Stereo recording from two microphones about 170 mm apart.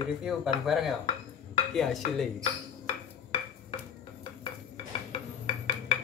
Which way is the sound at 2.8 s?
30° left (ahead or behind).